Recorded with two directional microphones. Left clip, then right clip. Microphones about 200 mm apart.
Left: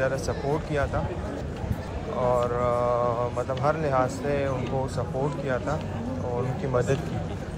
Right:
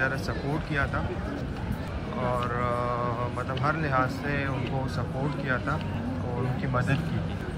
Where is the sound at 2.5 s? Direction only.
15° left (ahead or behind).